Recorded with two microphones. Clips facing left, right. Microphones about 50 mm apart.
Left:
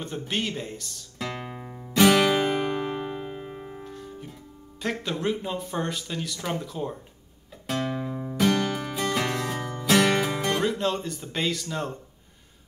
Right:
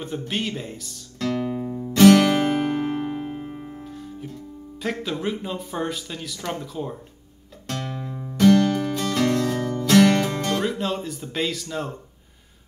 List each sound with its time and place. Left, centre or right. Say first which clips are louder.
0.0 s speech: right 2 dB; centre
1.1 s music: right 9 dB; centre
4.8 s speech: right 1 dB; centre
7.6 s music: left 3 dB; centre
10.6 s speech: even; centre